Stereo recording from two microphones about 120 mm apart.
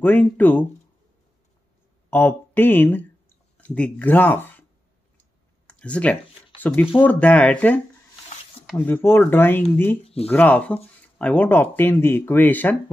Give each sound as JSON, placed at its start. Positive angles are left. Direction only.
{"t": 0.0, "sound": "speech", "side_deg": 15}
{"t": 2.0, "sound": "speech", "side_deg": 15}
{"t": 5.7, "sound": "a sound", "side_deg": 10}
{"t": 6.6, "sound": "speech", "side_deg": 15}
{"t": 10.0, "sound": "speech", "side_deg": 55}
{"t": 10.3, "sound": "speech", "side_deg": 15}